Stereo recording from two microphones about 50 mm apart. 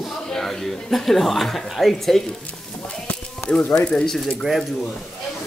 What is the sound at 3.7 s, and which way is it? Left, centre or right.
Speech, centre.